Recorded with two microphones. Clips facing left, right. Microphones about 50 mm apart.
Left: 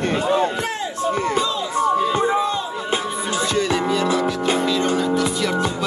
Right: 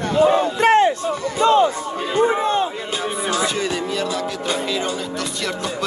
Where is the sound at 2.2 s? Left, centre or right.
Right.